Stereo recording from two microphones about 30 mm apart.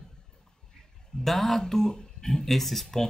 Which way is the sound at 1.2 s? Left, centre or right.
Centre.